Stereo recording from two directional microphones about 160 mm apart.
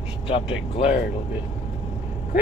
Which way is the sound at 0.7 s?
40° left (ahead or behind).